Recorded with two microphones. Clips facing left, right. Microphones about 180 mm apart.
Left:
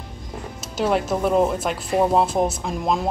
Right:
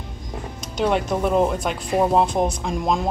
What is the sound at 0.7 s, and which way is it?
Speech, 5° left (ahead or behind).